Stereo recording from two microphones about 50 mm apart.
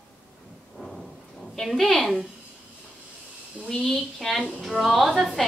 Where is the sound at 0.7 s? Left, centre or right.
Centre.